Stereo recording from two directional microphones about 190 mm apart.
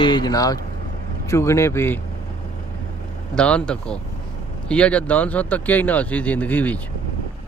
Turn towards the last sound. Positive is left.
turn(degrees=10)  # may be behind; listen again after turning